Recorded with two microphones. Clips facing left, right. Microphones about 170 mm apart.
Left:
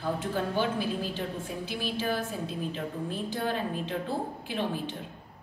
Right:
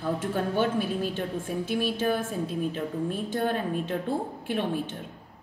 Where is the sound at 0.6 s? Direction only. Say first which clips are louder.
Right 5 dB; 55° right (ahead or behind).